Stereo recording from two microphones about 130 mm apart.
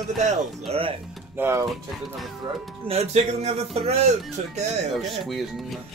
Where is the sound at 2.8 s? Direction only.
55° right (ahead or behind).